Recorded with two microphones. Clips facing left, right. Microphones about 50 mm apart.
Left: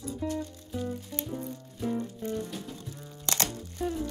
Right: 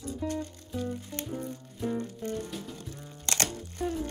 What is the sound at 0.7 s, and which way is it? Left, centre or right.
Music, right.